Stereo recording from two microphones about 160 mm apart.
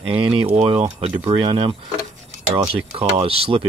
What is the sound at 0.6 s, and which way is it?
Speech, 40° right (ahead or behind).